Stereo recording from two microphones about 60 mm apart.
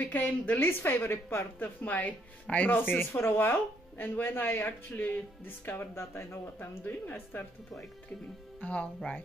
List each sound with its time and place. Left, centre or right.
0.1 s speech: left
1.6 s a woman's voice: left
6.8 s a woman's voice: left
8.5 s a woman's voice: left